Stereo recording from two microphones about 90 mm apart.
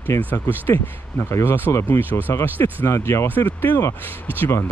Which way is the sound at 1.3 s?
25° left (ahead or behind).